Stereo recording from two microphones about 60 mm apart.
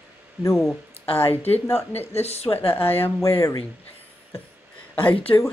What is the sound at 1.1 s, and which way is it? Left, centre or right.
A woman's voice, left.